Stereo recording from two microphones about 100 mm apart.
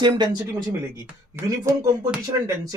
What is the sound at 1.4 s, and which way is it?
Speech, 35° right (ahead or behind).